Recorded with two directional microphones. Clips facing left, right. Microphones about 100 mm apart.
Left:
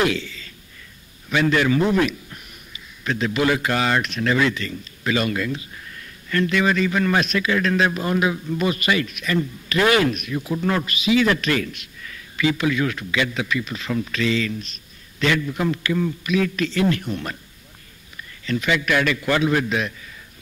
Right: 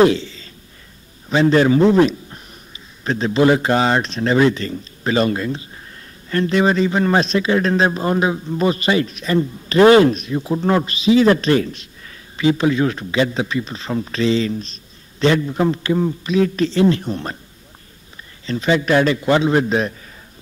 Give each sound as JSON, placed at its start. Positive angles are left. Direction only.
{"t": 0.0, "sound": "a man's voice", "side_deg": -30}
{"t": 18.4, "sound": "a man's voice", "side_deg": -30}